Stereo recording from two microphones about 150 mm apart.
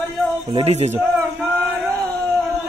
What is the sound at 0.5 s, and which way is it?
Speech, 45° right (ahead or behind).